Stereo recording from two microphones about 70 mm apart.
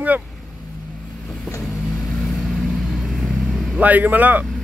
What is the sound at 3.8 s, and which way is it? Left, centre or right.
Speech, right.